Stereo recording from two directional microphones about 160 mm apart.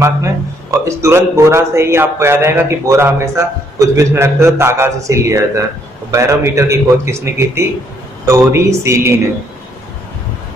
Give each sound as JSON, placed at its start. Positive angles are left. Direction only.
{"t": 0.0, "sound": "a man's voice", "side_deg": -20}